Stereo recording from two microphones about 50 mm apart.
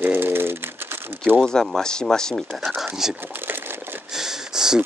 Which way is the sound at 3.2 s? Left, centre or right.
Right.